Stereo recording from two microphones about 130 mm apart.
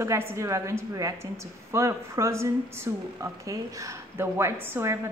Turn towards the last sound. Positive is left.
turn(degrees=-20)  # may be behind; listen again after turning